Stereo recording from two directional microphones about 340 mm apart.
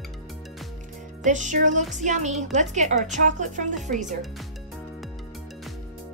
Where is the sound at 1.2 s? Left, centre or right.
Right.